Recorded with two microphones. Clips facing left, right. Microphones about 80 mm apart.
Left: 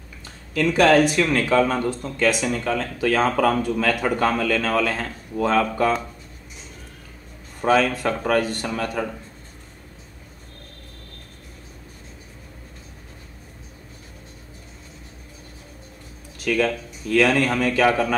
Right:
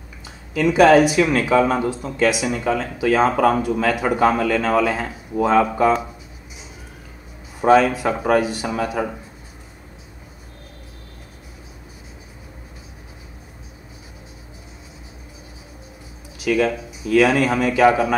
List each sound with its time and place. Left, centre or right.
0.6 s speech: centre
7.6 s speech: centre
16.3 s speech: centre